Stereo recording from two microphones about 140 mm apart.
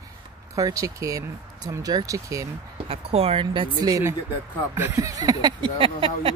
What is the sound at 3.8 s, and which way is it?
Speech, 25° right (ahead or behind).